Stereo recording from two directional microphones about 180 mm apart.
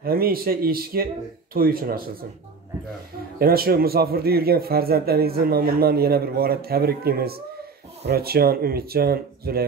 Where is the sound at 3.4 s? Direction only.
55° right (ahead or behind).